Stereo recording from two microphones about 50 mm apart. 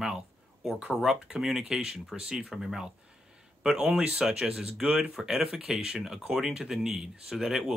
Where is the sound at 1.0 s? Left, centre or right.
Centre.